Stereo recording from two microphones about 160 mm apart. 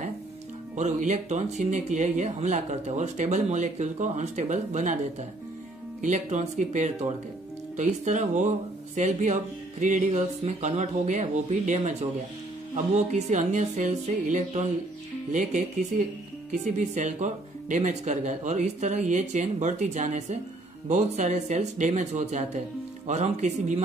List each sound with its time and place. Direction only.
0.7 s speech: 45° right (ahead or behind)
5.9 s speech: 50° right (ahead or behind)